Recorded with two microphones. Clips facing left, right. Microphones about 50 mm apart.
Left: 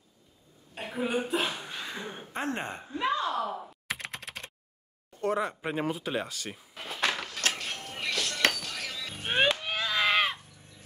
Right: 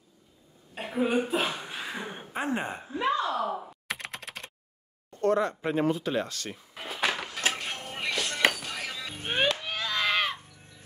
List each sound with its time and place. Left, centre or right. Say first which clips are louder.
0.7 s speech: right 4 dB; centre
3.4 s computer keyboard: right 3 dB; centre
3.8 s computer keyboard: even; centre
5.2 s speech: right 4 dB; centre
6.7 s music: right 1 dB; centre
9.3 s a sound: left 1 dB; centre